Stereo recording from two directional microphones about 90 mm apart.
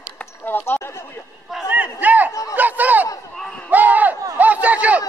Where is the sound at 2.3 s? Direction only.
40° left (ahead or behind).